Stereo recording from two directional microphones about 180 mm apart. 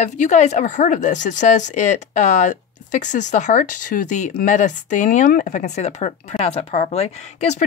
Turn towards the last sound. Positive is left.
turn(degrees=40)  # may be behind; listen again after turning